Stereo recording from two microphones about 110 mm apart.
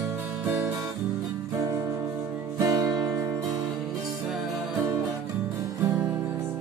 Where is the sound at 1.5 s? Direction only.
30° right (ahead or behind).